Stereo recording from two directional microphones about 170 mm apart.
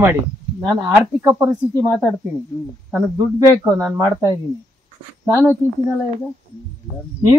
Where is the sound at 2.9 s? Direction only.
15° right (ahead or behind).